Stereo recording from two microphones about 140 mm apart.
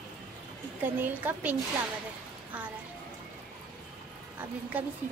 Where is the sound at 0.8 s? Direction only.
15° right (ahead or behind).